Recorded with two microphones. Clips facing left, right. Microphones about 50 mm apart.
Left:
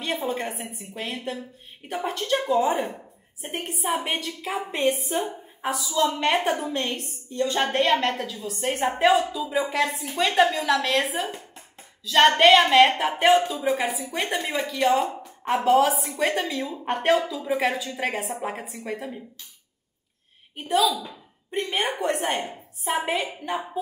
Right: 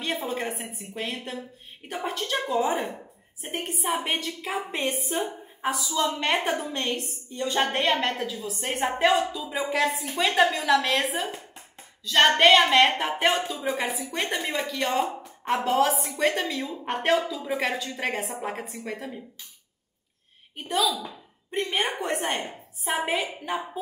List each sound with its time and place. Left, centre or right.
0.0 s a woman's voice: centre
20.5 s a woman's voice: centre